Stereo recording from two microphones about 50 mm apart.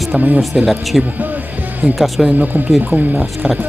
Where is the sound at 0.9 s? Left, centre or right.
Centre.